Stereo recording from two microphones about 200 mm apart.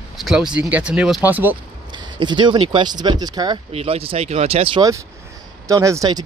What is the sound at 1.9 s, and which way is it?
Speech, 25° right (ahead or behind).